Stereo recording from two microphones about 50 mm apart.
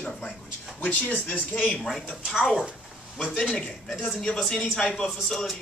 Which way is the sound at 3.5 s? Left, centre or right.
Centre.